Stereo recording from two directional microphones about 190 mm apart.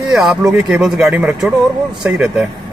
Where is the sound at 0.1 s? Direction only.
5° right (ahead or behind).